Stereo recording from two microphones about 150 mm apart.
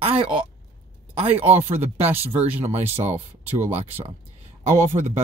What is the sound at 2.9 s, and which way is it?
Speech, 45° right (ahead or behind).